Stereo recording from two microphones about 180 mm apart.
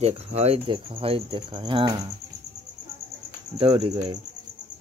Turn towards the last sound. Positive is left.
turn(degrees=-35)  # may be behind; listen again after turning